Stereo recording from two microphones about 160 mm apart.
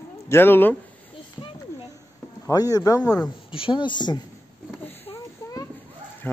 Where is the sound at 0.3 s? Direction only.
15° left (ahead or behind).